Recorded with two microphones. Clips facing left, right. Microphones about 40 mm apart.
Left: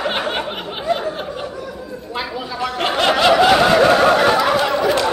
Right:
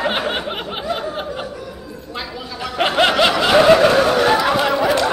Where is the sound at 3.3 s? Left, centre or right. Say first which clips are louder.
Left 1 dB; centre.